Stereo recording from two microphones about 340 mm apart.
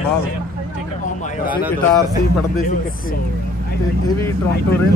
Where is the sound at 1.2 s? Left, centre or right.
Left.